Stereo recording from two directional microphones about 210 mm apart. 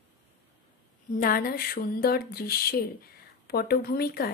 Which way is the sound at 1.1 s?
45° left (ahead or behind).